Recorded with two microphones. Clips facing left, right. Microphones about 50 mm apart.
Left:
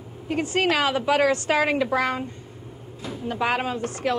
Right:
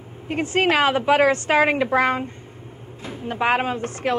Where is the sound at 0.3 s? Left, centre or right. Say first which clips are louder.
Right 3 dB; right.